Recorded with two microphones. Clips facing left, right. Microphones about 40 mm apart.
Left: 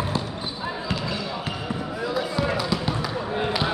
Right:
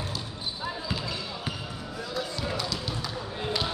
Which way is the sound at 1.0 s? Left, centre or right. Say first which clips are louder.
Left 5 dB; centre.